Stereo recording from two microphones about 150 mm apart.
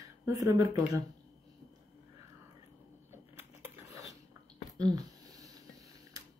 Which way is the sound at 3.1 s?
15° right (ahead or behind).